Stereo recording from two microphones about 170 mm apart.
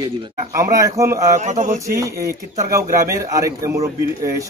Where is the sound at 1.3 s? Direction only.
45° right (ahead or behind).